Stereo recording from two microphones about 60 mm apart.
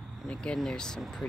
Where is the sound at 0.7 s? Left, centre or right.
Centre.